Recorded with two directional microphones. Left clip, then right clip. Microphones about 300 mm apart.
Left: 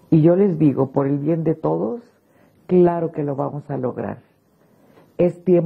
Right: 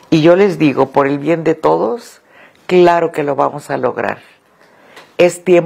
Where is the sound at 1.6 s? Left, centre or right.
Right.